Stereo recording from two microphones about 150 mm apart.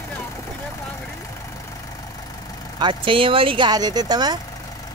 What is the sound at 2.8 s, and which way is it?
Speech, 35° right (ahead or behind).